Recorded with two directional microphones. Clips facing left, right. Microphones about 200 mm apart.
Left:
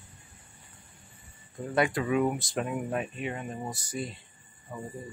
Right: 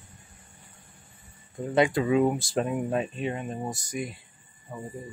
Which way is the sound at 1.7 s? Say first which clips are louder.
Right 4 dB; 25° right (ahead or behind).